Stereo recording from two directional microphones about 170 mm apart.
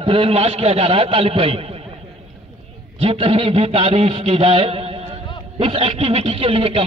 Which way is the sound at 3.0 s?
35° right (ahead or behind).